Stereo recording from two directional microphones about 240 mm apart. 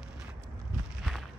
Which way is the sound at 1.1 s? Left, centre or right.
Centre.